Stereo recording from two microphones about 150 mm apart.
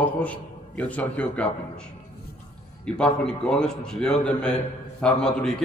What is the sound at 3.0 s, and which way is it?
A man's voice, 5° left (ahead or behind).